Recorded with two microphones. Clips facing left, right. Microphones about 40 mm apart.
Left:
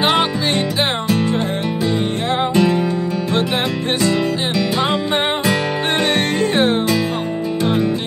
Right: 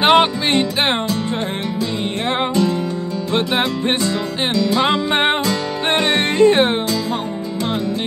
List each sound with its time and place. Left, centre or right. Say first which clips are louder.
0.0 s music: right 3 dB; centre
4.6 s music: right 4 dB; left
4.8 s music: right 2 dB; right